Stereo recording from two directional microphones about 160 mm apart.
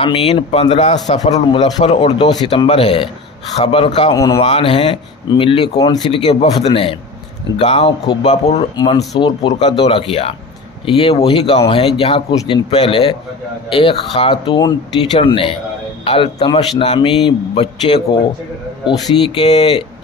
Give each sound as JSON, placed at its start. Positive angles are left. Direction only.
{"t": 0.0, "sound": "a man's voice", "side_deg": 35}
{"t": 1.4, "sound": "speech", "side_deg": 30}
{"t": 8.3, "sound": "a man's voice", "side_deg": 45}
{"t": 8.7, "sound": "speech", "side_deg": 25}